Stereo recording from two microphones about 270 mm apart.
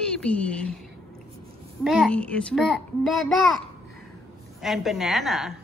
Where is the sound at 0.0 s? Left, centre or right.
Centre.